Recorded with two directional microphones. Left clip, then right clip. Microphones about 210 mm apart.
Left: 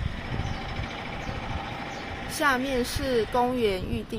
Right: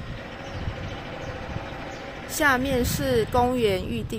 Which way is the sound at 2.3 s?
15° right (ahead or behind).